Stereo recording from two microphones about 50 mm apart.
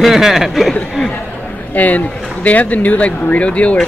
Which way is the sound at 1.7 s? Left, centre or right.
Left.